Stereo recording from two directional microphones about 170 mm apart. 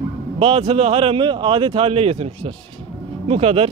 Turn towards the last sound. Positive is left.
turn(degrees=-35)  # may be behind; listen again after turning